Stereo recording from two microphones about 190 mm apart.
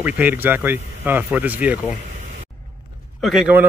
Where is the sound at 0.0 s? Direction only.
10° right (ahead or behind).